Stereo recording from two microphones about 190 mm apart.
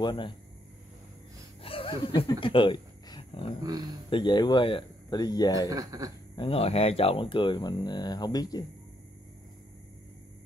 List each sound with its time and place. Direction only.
0.0 s speech: 25° left (ahead or behind)
1.6 s wild animals: 30° left (ahead or behind)
4.1 s speech: 25° left (ahead or behind)
5.7 s speech: 20° right (ahead or behind)
6.3 s speech: 30° left (ahead or behind)